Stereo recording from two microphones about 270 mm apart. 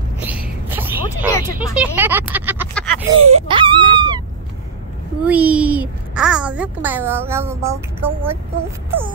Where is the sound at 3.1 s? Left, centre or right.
Right.